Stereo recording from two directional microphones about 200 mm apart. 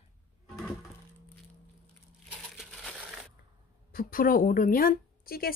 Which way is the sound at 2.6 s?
Centre (ahead or behind).